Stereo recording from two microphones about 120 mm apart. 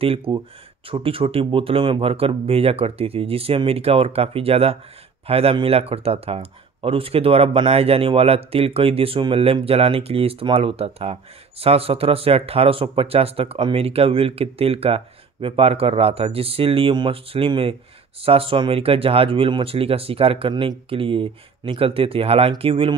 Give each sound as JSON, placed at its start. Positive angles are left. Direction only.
{"t": 0.0, "sound": "speech", "side_deg": -55}